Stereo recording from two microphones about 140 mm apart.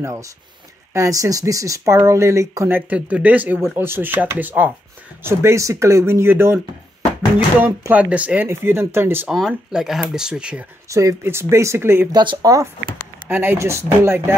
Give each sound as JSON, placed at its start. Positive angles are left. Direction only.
{"t": 0.0, "sound": "speech", "side_deg": -20}
{"t": 7.6, "sound": "speech", "side_deg": -15}
{"t": 9.3, "sound": "speech", "side_deg": -5}
{"t": 10.9, "sound": "speech", "side_deg": -25}
{"t": 12.1, "sound": "speech", "side_deg": -30}
{"t": 13.3, "sound": "speech", "side_deg": -15}